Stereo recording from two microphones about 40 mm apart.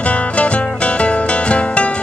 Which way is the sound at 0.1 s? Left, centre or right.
Left.